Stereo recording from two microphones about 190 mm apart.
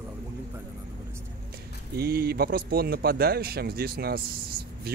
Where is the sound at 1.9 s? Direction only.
55° right (ahead or behind).